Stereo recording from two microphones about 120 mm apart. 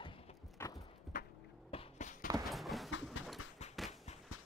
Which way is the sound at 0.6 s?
20° left (ahead or behind).